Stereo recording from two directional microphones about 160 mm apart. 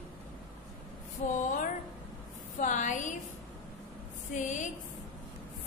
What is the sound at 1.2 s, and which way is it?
Speech, 55° left (ahead or behind).